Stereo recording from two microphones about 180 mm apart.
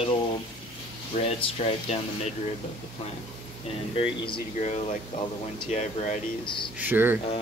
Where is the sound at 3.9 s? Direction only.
30° left (ahead or behind).